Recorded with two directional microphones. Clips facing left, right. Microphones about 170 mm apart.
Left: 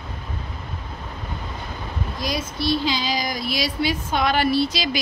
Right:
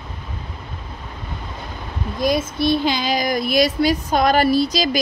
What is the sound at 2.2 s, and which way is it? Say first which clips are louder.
Speech: right 7 dB; 55° right (ahead or behind).